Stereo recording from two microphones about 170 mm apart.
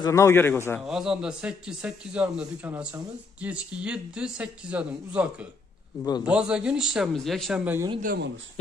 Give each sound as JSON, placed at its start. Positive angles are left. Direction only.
{"t": 0.0, "sound": "a man's voice", "side_deg": 15}
{"t": 0.7, "sound": "a man's voice", "side_deg": -5}
{"t": 7.6, "sound": "a man's voice", "side_deg": -15}
{"t": 8.0, "sound": "speech", "side_deg": -60}